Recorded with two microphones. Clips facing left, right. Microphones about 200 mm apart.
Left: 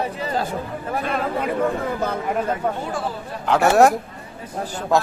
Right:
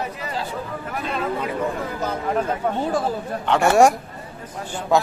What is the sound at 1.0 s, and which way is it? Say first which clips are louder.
Speech: even; 55° left (ahead or behind).